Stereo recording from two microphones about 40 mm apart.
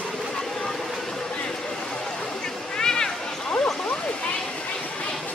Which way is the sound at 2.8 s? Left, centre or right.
Centre.